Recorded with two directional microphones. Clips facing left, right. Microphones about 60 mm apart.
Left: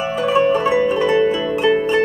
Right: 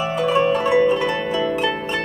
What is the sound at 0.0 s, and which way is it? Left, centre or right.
Zither, left.